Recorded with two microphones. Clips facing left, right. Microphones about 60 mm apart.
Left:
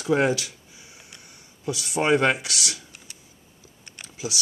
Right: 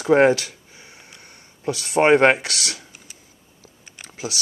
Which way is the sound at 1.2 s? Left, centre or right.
Right.